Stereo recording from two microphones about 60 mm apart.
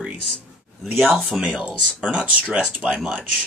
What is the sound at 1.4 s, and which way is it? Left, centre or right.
Speech, centre.